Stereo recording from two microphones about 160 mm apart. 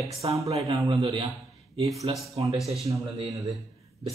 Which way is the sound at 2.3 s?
40° right (ahead or behind).